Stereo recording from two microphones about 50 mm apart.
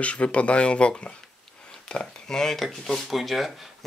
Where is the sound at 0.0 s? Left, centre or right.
Left.